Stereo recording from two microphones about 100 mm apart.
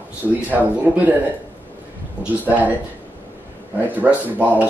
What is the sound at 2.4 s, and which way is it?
Speech, 15° right (ahead or behind).